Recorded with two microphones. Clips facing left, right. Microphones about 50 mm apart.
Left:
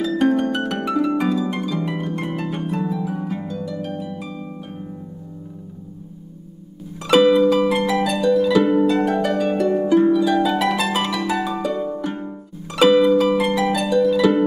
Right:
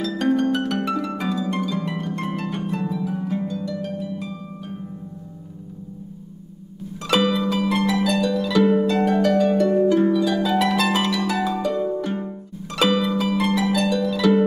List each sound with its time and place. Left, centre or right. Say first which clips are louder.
0.0 s harp: left 2 dB; centre
7.0 s harp: left 7 dB; centre